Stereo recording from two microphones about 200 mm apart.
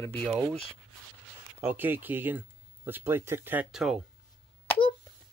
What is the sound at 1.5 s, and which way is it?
Speech, 10° right (ahead or behind).